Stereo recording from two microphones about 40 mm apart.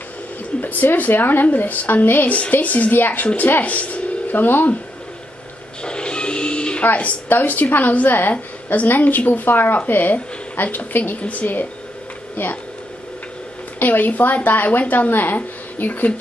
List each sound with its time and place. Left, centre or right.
0.6 s speech: left
2.5 s speech: left
2.9 s speech: left
3.6 s speech: left
5.8 s a sound: left
6.8 s speech: left
11.1 s speech: left
13.7 s speech: left